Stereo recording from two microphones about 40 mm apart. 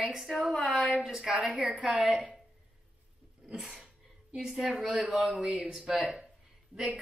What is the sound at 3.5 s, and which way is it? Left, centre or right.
A woman's voice, centre.